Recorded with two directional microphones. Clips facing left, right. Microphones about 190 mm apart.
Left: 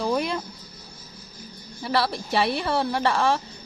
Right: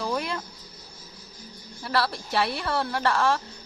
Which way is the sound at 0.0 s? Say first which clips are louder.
Left 4 dB; 20° left (ahead or behind).